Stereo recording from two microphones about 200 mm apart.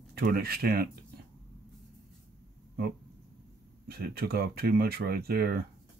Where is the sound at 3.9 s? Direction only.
50° right (ahead or behind).